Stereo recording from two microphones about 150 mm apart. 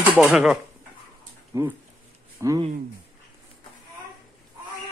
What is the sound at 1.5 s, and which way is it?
Speech, 20° right (ahead or behind).